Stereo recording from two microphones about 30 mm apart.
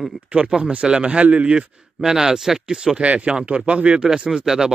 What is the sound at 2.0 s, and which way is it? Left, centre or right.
Speech, centre.